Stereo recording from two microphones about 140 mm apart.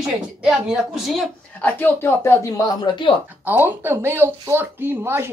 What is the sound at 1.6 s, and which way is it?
Speech, 15° left (ahead or behind).